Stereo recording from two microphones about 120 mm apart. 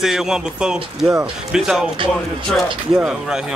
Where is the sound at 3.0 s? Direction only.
10° right (ahead or behind).